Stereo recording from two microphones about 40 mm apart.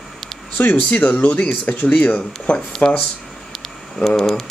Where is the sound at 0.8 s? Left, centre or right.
Left.